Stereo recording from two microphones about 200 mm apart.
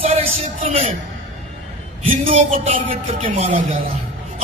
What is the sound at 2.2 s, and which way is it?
Speech, 30° right (ahead or behind).